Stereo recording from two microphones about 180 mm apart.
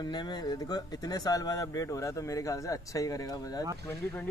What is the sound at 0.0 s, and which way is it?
Speech, 25° left (ahead or behind).